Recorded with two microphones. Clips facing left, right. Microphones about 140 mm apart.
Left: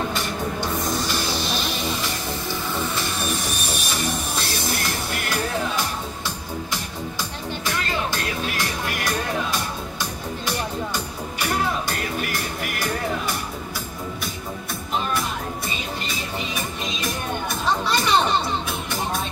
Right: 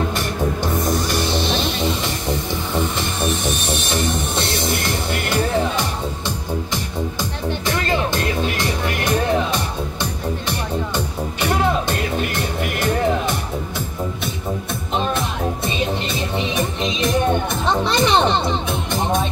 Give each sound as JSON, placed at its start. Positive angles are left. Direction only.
{"t": 1.3, "sound": "music", "side_deg": -25}
{"t": 3.0, "sound": "music", "side_deg": -25}
{"t": 7.6, "sound": "music", "side_deg": -20}
{"t": 12.3, "sound": "music", "side_deg": -25}
{"t": 15.0, "sound": "music", "side_deg": -25}